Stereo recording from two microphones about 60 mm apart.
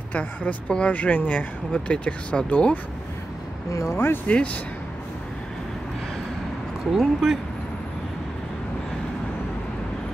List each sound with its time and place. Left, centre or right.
0.1 s speech: left
3.9 s speech: left
4.3 s speech: left
7.0 s speech: centre